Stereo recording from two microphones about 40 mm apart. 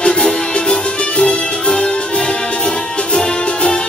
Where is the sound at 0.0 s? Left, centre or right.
Centre.